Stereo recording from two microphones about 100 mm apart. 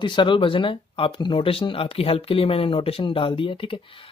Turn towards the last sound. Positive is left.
turn(degrees=60)  # may be behind; listen again after turning